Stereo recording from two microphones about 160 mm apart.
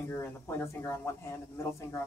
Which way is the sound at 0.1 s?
15° left (ahead or behind).